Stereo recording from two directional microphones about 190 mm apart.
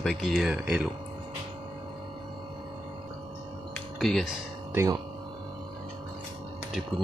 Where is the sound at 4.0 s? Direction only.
Centre (ahead or behind).